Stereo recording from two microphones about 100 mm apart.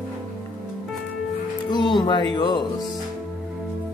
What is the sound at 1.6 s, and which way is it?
Music, 50° left (ahead or behind).